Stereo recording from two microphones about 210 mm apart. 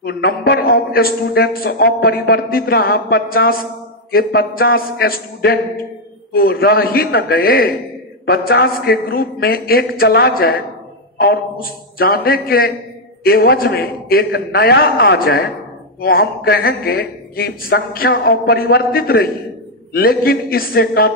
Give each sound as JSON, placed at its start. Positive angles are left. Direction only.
{"t": 0.0, "sound": "a man's voice", "side_deg": 50}